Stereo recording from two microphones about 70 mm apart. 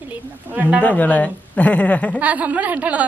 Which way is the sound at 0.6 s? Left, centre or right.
Right.